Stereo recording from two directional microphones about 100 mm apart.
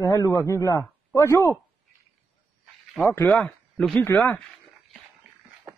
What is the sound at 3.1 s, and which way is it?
A man's voice, 15° left (ahead or behind).